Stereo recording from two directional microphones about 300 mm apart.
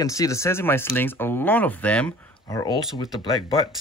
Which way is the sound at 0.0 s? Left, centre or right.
Centre.